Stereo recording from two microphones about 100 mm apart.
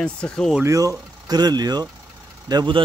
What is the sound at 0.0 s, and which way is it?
Speech, 10° left (ahead or behind).